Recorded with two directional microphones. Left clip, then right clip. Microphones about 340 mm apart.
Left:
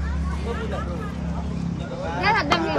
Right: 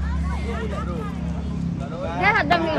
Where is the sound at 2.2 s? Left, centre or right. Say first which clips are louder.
Right 2 dB; centre.